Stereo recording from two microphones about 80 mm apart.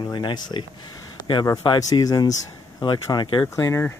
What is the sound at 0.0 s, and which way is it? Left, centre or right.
Speech, left.